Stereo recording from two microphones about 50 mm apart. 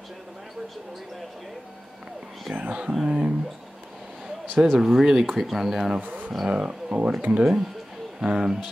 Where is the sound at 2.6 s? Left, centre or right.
Right.